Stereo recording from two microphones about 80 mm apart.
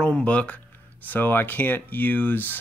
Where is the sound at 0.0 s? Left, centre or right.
Centre.